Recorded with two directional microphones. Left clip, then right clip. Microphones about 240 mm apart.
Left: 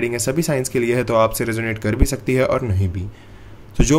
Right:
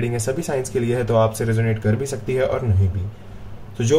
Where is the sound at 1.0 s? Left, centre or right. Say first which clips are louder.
Left 2 dB; left.